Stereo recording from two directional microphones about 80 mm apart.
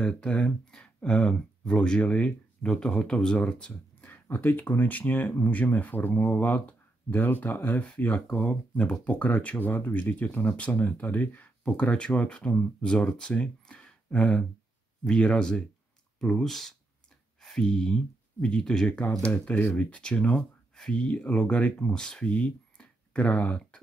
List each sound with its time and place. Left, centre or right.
0.0 s speech: centre
4.1 s speech: left